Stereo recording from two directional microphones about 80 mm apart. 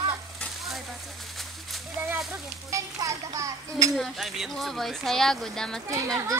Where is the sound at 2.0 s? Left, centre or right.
Right.